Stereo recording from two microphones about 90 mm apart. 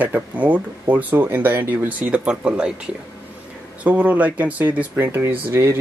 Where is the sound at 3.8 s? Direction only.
15° right (ahead or behind).